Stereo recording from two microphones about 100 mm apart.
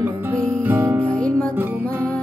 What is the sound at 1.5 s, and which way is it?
Music, 20° right (ahead or behind).